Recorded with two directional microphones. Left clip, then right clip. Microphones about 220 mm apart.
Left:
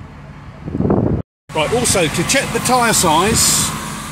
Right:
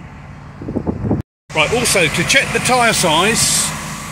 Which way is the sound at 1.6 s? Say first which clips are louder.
Right 2 dB; 10° left (ahead or behind).